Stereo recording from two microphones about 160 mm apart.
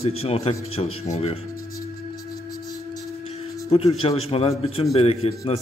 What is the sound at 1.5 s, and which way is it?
Singing bowl, 20° left (ahead or behind).